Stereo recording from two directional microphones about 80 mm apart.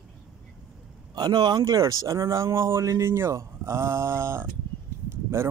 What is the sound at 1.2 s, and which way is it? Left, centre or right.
Speech, right.